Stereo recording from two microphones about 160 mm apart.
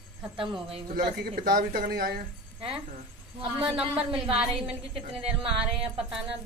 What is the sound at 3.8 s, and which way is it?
Speech, 35° right (ahead or behind).